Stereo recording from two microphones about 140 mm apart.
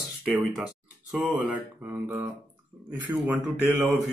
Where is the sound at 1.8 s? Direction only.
15° right (ahead or behind).